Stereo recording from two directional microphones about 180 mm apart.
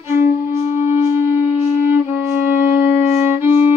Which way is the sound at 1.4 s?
35° left (ahead or behind).